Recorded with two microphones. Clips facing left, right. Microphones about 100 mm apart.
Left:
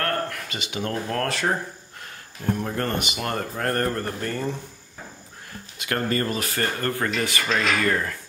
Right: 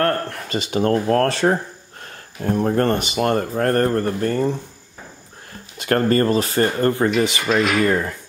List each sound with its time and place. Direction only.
0.0 s speech: 35° right (ahead or behind)
2.4 s speech: 40° right (ahead or behind)
5.8 s speech: 40° right (ahead or behind); by 8.2 s 20° right (ahead or behind)